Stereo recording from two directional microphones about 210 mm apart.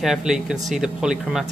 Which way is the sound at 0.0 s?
Centre (ahead or behind).